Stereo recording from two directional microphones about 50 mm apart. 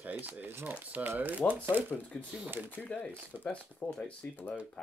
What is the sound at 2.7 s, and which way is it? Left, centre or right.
Speech, left.